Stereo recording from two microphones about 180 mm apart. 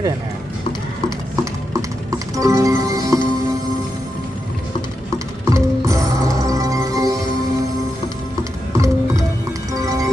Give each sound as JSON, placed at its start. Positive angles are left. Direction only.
{"t": 2.3, "sound": "music", "side_deg": -20}
{"t": 5.5, "sound": "music", "side_deg": -15}
{"t": 8.7, "sound": "music", "side_deg": -15}